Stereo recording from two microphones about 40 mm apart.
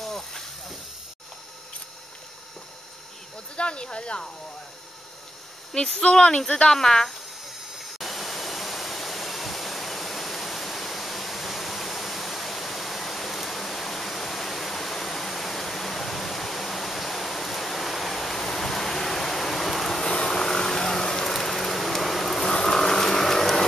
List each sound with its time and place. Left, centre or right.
0.0 s snake: centre
3.5 s speech: left
5.7 s speech: centre
7.8 s waterfall: centre
20.1 s a sound: centre